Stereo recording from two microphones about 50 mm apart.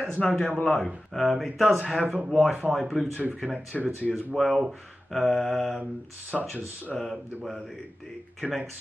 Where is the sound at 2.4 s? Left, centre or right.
Centre.